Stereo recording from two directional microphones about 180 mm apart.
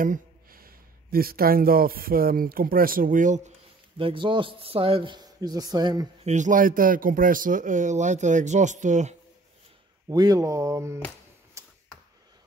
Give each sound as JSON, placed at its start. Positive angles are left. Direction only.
{"t": 0.0, "sound": "speech", "side_deg": -50}
{"t": 4.0, "sound": "a man's voice", "side_deg": -30}
{"t": 6.2, "sound": "speech", "side_deg": -40}
{"t": 10.0, "sound": "speech", "side_deg": -20}
{"t": 11.6, "sound": "a sound", "side_deg": -15}